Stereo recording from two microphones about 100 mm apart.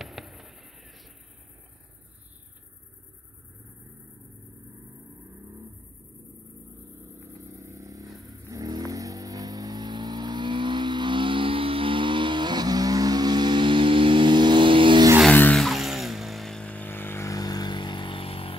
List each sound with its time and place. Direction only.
0.0 s fireworks: centre (ahead or behind)
7.0 s vehicle: 25° right (ahead or behind); by 15.0 s 55° right (ahead or behind)
15.5 s vehicle: centre (ahead or behind); by 18.5 s 65° left (ahead or behind)